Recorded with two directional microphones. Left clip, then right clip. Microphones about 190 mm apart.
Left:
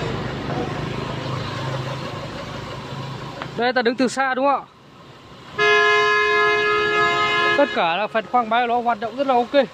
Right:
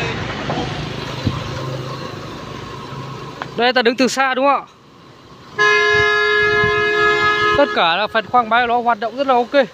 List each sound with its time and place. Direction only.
3.5 s speech: 10° right (ahead or behind)
5.6 s music: 20° left (ahead or behind)
7.5 s speech: centre (ahead or behind)